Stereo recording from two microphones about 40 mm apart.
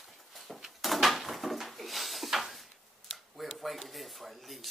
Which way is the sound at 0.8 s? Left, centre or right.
Centre.